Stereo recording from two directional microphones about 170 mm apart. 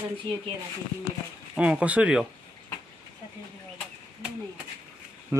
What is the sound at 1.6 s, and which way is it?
Speech, 5° right (ahead or behind).